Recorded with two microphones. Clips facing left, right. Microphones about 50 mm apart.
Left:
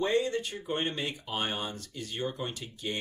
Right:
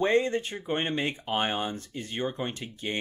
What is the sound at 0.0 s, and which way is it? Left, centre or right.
Speech, right.